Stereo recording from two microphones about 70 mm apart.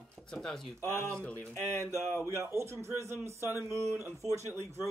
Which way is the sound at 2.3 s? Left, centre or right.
Right.